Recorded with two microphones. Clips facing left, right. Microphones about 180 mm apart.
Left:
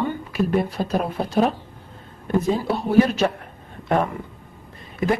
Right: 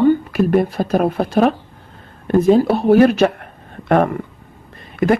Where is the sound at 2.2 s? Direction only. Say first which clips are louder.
Right 9 dB; 70° right (ahead or behind).